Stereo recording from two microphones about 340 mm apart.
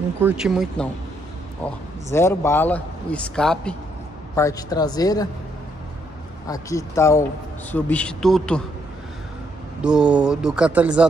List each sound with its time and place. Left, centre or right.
0.2 s a man's voice: centre
6.4 s a man's voice: centre
9.8 s a man's voice: centre